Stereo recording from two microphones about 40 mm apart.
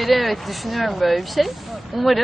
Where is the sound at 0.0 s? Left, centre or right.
Centre.